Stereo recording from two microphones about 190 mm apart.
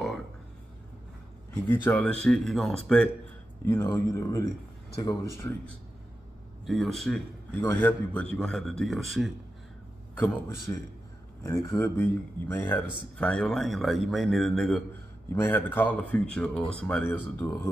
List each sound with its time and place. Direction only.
1.5 s speech: 10° left (ahead or behind)
6.6 s a man's voice: centre (ahead or behind)
11.4 s speech: 10° left (ahead or behind)